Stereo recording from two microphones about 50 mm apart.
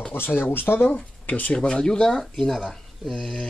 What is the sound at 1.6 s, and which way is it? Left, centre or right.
Speech, centre.